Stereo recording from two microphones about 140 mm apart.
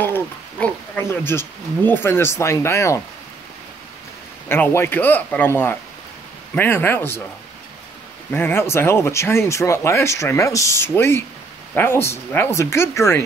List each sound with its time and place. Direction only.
0.0 s speech: 15° left (ahead or behind)
4.5 s speech: 15° left (ahead or behind)
8.3 s speech: 15° left (ahead or behind)